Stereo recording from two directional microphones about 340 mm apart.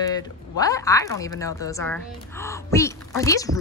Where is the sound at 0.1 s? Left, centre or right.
Centre.